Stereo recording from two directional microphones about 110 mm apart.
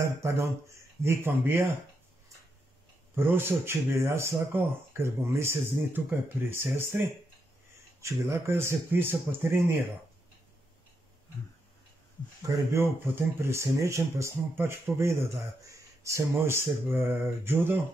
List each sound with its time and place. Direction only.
0.0 s speech: 25° right (ahead or behind)
3.2 s speech: 20° right (ahead or behind)
8.0 s speech: 25° right (ahead or behind)
12.4 s speech: 25° right (ahead or behind)